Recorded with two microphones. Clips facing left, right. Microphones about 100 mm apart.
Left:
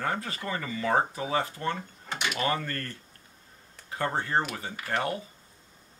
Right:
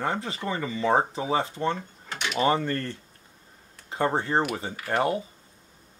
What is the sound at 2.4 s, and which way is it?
Speech, 25° right (ahead or behind).